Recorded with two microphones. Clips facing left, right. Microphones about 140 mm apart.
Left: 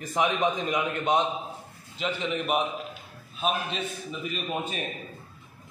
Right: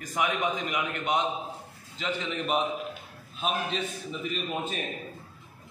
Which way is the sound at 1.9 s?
15° left (ahead or behind).